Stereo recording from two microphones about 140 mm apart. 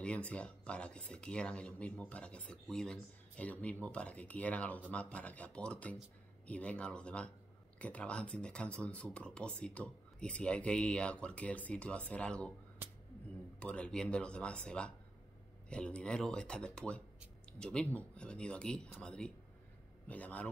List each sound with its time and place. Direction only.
0.0 s speech: 10° left (ahead or behind)
13.6 s speech: 10° left (ahead or behind)